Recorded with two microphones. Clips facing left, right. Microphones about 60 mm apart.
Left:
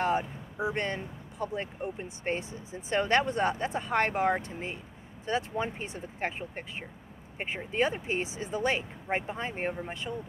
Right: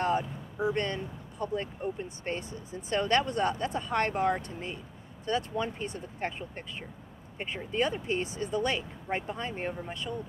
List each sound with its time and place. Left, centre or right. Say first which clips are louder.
0.0 s speech: even; centre